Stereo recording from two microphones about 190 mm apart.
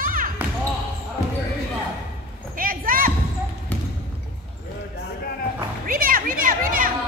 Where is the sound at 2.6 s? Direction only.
50° right (ahead or behind).